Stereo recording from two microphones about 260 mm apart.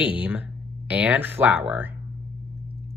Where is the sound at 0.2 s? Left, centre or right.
Centre.